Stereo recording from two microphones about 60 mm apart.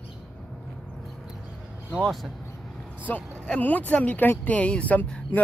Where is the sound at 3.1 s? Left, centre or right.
Left.